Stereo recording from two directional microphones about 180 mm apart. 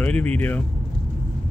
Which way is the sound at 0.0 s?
10° left (ahead or behind).